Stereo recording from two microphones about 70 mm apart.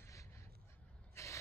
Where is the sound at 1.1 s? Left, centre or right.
Left.